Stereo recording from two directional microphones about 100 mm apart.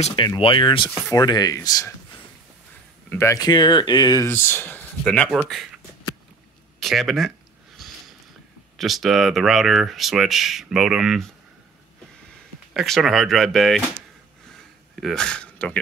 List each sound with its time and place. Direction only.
0.4 s speech: 55° left (ahead or behind)
1.1 s speech: 40° left (ahead or behind)
3.1 s speech: 25° left (ahead or behind)
3.3 s speech: 45° left (ahead or behind)
4.3 s speech: 25° left (ahead or behind)
6.8 s a sound: centre (ahead or behind)
8.7 s speech: centre (ahead or behind)
12.7 s speech: centre (ahead or behind)
15.0 s speech: 5° left (ahead or behind)